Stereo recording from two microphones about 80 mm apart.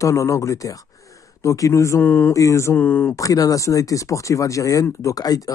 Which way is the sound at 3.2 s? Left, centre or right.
Left.